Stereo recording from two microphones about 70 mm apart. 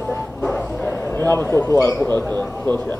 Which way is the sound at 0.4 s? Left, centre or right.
Left.